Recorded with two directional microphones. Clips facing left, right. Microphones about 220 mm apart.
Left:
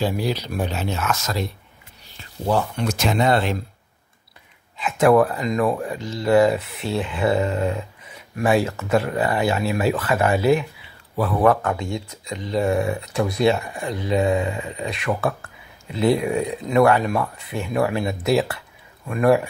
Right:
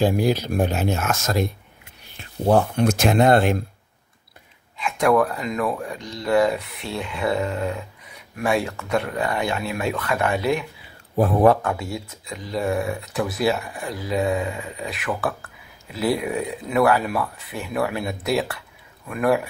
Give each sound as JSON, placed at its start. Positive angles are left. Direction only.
{"t": 0.0, "sound": "speech", "side_deg": -50}
{"t": 4.7, "sound": "speech", "side_deg": 5}
{"t": 11.6, "sound": "speech", "side_deg": -5}